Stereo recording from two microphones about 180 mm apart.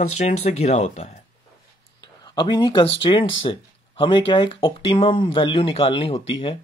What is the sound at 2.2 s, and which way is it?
Speech, 25° left (ahead or behind).